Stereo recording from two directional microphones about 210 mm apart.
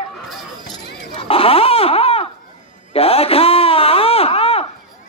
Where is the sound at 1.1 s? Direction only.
25° left (ahead or behind).